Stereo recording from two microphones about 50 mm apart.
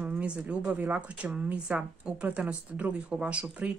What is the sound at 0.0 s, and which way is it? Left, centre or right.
Speech, right.